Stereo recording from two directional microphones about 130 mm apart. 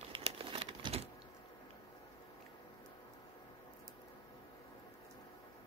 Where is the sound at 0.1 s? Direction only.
45° right (ahead or behind).